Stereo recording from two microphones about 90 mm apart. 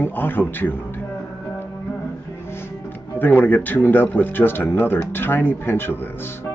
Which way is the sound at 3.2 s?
20° left (ahead or behind).